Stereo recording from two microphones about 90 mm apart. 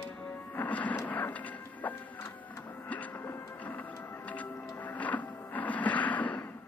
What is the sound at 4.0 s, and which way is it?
Music, 30° left (ahead or behind).